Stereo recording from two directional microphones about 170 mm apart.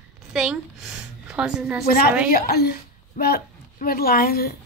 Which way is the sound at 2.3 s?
60° left (ahead or behind).